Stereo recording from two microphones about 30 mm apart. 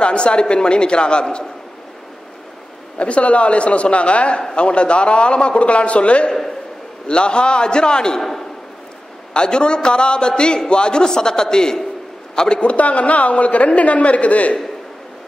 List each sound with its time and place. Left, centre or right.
0.0 s a man's voice: left
3.0 s a woman's voice: left
9.3 s a man's voice: left
12.5 s a woman's voice: left